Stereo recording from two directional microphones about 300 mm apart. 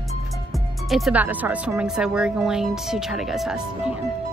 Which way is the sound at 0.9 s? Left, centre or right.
Centre.